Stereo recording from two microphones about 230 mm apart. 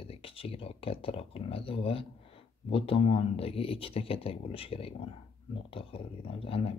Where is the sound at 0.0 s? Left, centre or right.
Left.